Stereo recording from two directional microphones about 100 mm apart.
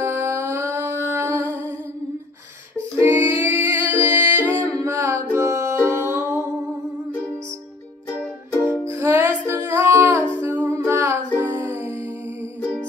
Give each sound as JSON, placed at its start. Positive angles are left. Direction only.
{"t": 0.0, "sound": "music", "side_deg": -30}
{"t": 3.0, "sound": "music", "side_deg": -25}
{"t": 9.0, "sound": "music", "side_deg": -20}
{"t": 10.4, "sound": "humming", "side_deg": -15}
{"t": 10.7, "sound": "music", "side_deg": -25}